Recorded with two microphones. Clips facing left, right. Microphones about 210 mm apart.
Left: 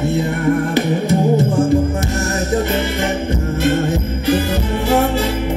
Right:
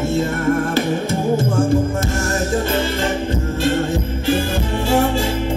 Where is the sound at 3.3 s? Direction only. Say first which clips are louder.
Left 2 dB; 20° left (ahead or behind).